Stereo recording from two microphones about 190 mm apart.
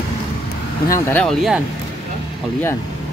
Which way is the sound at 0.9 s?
5° left (ahead or behind).